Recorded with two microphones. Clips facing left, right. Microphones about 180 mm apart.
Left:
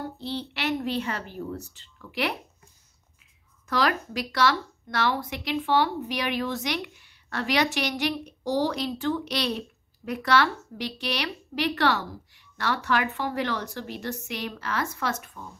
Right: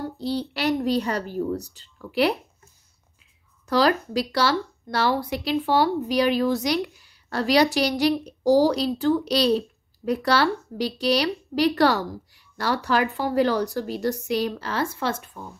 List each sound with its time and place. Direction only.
0.2 s speech: 40° right (ahead or behind)
3.6 s speech: 35° right (ahead or behind)